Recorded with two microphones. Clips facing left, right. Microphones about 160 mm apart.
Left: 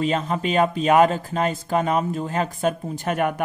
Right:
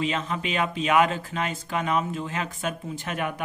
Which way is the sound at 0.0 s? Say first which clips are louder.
Left 5 dB; 40° left (ahead or behind).